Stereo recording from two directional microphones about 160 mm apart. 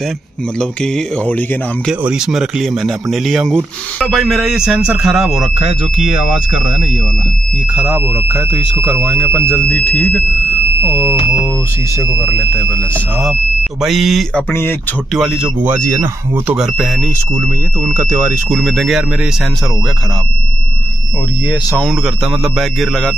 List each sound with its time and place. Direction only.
0.6 s speech: 5° left (ahead or behind)
1.9 s speech: 5° right (ahead or behind)
7.7 s speech: 10° right (ahead or behind)
9.7 s speech: 10° left (ahead or behind)
10.8 s speech: 15° right (ahead or behind)
13.8 s speech: centre (ahead or behind)
14.5 s speech: 15° left (ahead or behind)
15.1 s speech: centre (ahead or behind)
15.6 s speech: 15° right (ahead or behind)
16.5 s speech: centre (ahead or behind)
17.8 s speech: 15° right (ahead or behind)
18.5 s speech: centre (ahead or behind)
21.7 s speech: centre (ahead or behind)